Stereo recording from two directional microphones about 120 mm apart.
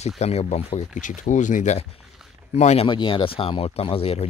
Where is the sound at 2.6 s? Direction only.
70° left (ahead or behind).